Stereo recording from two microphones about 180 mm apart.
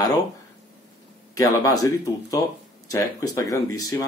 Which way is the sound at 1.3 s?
20° left (ahead or behind).